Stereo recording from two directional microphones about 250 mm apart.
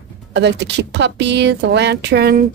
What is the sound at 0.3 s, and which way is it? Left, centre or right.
A woman's voice, right.